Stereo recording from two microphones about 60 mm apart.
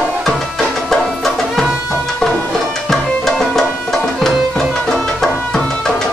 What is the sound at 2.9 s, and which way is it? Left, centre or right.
Music, centre.